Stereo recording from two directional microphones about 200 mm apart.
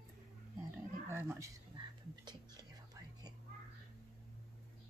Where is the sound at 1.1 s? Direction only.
10° right (ahead or behind).